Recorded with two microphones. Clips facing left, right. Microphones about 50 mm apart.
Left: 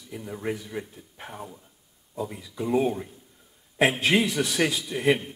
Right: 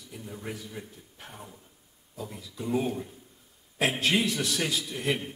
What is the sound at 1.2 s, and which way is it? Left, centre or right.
Speech, left.